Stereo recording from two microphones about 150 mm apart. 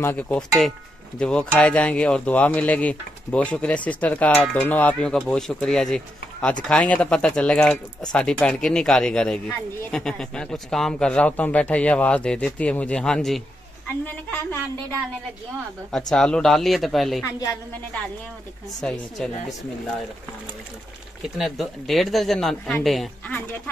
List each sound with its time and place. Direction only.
0.0 s speech: 10° left (ahead or behind)
16.1 s speech: 5° left (ahead or behind)
17.2 s a woman's voice: 25° left (ahead or behind)
18.8 s speech: 5° left (ahead or behind)
21.4 s speech: centre (ahead or behind)